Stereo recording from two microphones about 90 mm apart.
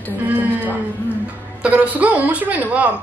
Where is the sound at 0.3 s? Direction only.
20° right (ahead or behind).